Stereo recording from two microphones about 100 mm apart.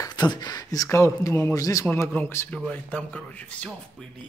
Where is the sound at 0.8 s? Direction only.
30° left (ahead or behind).